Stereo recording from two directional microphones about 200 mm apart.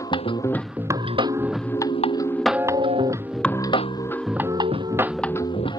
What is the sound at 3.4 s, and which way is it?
Music, 10° left (ahead or behind).